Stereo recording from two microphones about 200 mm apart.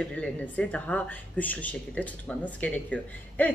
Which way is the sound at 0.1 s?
5° left (ahead or behind).